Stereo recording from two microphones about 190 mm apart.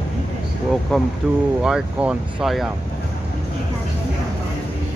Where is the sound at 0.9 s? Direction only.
5° left (ahead or behind).